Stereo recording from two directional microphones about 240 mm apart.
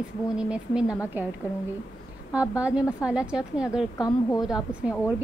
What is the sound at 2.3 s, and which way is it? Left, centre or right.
A woman's voice, centre.